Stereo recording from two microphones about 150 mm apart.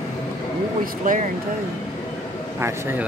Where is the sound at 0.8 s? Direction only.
65° right (ahead or behind).